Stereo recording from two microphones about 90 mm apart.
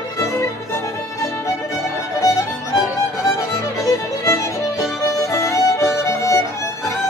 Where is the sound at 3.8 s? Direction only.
35° left (ahead or behind).